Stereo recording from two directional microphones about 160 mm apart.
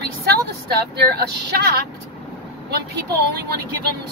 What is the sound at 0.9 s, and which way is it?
Speech, 80° right.